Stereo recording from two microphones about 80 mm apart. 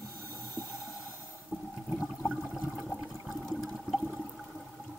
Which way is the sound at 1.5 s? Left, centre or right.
Centre.